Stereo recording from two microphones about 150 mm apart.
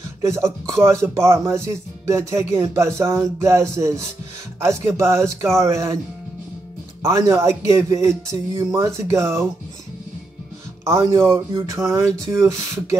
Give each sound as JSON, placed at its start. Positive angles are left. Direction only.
{"t": 0.2, "sound": "speech", "side_deg": -20}
{"t": 7.0, "sound": "speech", "side_deg": -20}
{"t": 10.8, "sound": "speech", "side_deg": -20}